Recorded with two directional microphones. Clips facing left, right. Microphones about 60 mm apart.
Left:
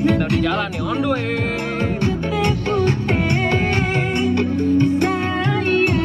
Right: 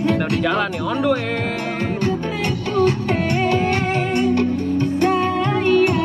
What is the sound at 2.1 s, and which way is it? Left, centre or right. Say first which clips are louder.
Music: left 3 dB; left.